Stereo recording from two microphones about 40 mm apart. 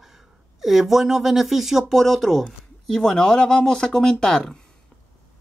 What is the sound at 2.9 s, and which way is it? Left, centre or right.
Speech, centre.